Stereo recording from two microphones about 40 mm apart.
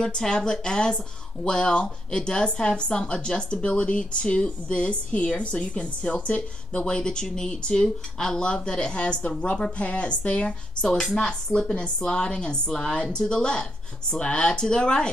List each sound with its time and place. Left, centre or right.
0.0 s a woman's voice: centre; by 6.9 s left
6.9 s a woman's voice: centre
10.8 s a woman's voice: centre